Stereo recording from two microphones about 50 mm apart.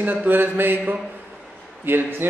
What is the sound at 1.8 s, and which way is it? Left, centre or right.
Speech, right.